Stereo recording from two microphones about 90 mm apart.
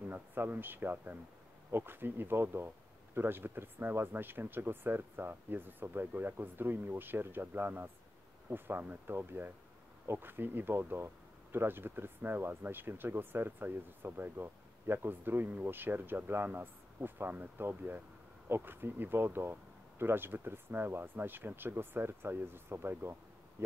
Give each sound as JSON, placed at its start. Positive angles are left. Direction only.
{"t": 0.1, "sound": "speech", "side_deg": -25}